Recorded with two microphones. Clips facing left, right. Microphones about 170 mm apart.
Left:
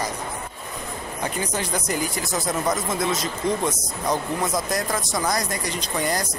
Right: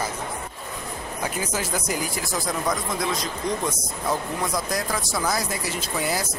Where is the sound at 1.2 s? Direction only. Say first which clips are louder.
Left 1 dB; 5° right (ahead or behind).